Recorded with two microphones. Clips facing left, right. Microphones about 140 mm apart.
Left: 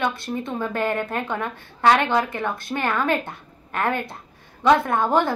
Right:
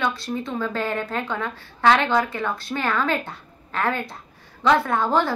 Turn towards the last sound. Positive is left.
turn(degrees=20)  # may be behind; listen again after turning